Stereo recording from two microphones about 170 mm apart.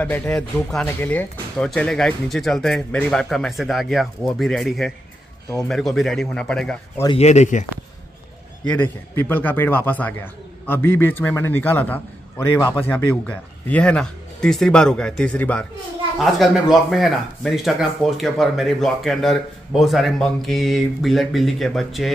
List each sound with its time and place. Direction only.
0.0 s speech: 10° left (ahead or behind)
7.2 s speech: 40° left (ahead or behind)
9.1 s a man's voice: 10° left (ahead or behind)